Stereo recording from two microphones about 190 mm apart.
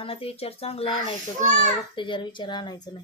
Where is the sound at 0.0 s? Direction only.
30° left (ahead or behind).